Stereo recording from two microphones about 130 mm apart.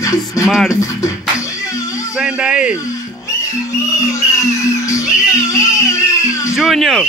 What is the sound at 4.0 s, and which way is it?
Music, 25° left (ahead or behind).